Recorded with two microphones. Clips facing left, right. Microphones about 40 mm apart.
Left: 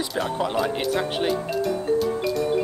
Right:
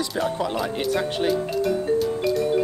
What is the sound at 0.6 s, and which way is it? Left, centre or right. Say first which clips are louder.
Speech: left 1 dB; centre.